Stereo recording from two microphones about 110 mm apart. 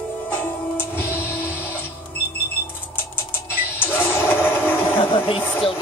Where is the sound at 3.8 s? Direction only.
20° left (ahead or behind).